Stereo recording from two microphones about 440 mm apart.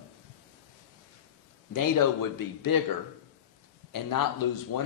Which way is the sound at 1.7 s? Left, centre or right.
Left.